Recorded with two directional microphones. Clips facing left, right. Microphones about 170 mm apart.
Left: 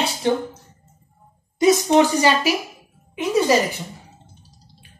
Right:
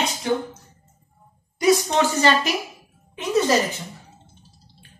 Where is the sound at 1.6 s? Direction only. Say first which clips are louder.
Left 4 dB; 20° left (ahead or behind).